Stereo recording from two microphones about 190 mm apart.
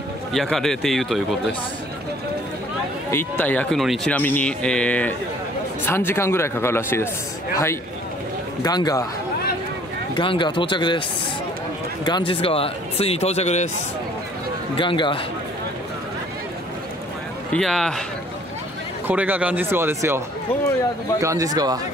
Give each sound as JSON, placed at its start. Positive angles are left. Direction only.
{"t": 0.3, "sound": "speech", "side_deg": 0}
{"t": 3.1, "sound": "speech", "side_deg": 10}
{"t": 8.6, "sound": "speech", "side_deg": 20}
{"t": 10.1, "sound": "speech", "side_deg": 25}
{"t": 14.8, "sound": "speech", "side_deg": 25}
{"t": 17.5, "sound": "speech", "side_deg": 5}
{"t": 19.0, "sound": "speech", "side_deg": -10}
{"t": 21.2, "sound": "speech", "side_deg": -15}